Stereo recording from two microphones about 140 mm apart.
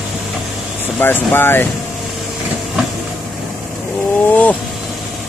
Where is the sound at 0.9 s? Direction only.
15° left (ahead or behind).